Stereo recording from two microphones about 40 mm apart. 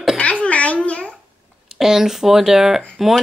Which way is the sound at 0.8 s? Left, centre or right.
Left.